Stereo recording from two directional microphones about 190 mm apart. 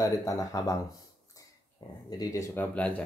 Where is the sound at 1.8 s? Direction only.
20° left (ahead or behind); by 3.0 s 5° left (ahead or behind).